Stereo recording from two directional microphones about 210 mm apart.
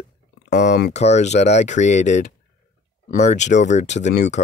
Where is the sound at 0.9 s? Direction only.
30° left (ahead or behind).